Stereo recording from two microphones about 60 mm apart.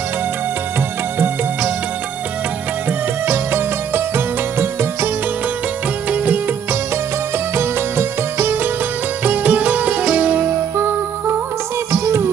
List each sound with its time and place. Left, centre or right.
3.3 s music: right
6.0 s music: right
7.5 s music: right
9.2 s music: right